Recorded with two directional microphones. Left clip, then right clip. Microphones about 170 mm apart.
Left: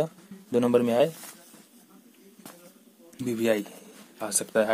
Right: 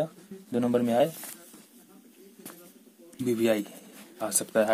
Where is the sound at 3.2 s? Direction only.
10° left (ahead or behind).